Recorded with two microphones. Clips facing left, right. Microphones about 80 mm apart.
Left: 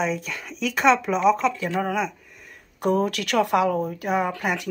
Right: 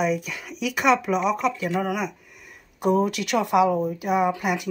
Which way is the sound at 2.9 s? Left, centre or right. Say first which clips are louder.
Right 1 dB; centre.